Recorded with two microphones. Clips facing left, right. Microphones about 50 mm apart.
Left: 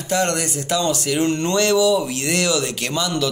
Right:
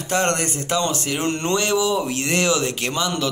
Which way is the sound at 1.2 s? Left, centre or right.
Right.